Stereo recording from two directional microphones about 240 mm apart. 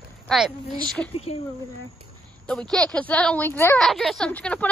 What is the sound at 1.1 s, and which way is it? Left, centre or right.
Speech, left.